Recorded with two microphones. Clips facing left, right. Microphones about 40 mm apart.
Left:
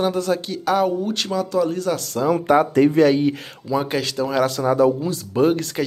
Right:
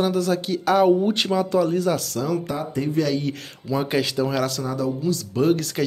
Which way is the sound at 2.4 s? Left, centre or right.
Left.